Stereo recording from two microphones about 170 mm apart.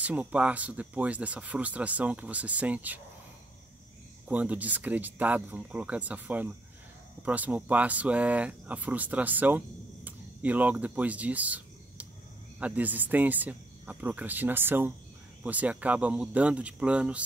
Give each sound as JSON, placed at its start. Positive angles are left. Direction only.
{"t": 0.0, "sound": "speech", "side_deg": -10}
{"t": 4.3, "sound": "speech", "side_deg": -10}
{"t": 10.0, "sound": "a sound", "side_deg": -10}
{"t": 12.5, "sound": "speech", "side_deg": -10}